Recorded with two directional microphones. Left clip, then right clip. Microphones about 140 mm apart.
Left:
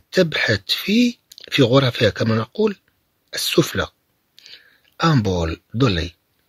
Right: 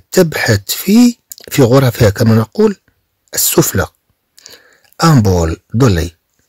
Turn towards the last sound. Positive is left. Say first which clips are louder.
# right 7 dB
turn(degrees=-60)  # may be behind; listen again after turning